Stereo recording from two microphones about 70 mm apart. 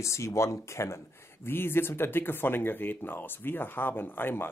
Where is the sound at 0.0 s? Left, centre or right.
Left.